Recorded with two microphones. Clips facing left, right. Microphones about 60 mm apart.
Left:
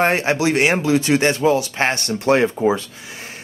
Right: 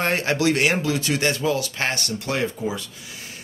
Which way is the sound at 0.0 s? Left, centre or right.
Left.